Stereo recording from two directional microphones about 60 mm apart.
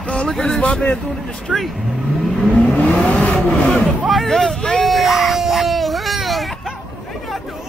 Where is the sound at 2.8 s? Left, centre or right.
Centre.